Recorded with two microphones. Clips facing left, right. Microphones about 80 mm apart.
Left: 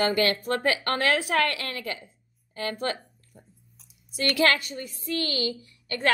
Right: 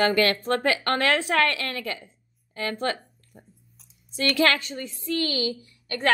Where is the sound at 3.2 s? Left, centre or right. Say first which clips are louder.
Right 2 dB; right.